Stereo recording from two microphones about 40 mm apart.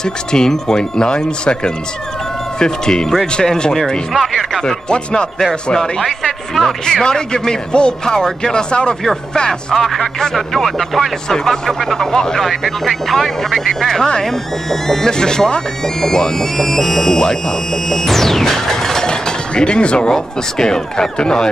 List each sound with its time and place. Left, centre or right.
0.0 s speech: centre
4.1 s music: centre
4.6 s speech: centre
9.0 s speech: centre
12.4 s speech: centre
15.1 s speech: centre
20.1 s speech: centre